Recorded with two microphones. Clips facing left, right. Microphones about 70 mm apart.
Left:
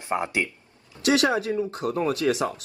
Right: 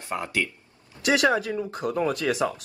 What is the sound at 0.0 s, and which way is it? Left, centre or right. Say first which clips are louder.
Speech: left 2 dB; left.